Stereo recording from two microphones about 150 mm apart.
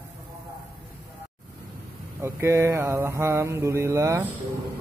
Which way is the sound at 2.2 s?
20° right (ahead or behind).